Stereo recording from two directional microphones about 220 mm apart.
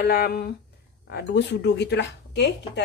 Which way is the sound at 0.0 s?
45° left (ahead or behind).